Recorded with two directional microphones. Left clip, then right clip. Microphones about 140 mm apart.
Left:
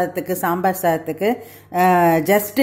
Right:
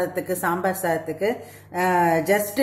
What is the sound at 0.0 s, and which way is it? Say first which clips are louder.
A woman's voice: left 3 dB; 40° left (ahead or behind).